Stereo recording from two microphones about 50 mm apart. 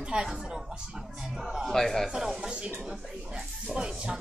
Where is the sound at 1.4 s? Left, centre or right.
Centre.